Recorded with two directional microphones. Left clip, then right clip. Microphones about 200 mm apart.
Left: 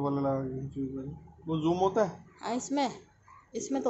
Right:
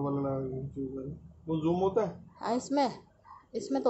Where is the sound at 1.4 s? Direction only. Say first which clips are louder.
Left 1 dB; 40° left (ahead or behind).